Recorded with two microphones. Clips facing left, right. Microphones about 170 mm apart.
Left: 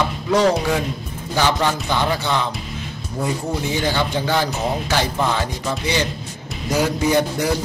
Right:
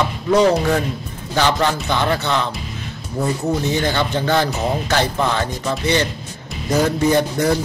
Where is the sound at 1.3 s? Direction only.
10° left (ahead or behind).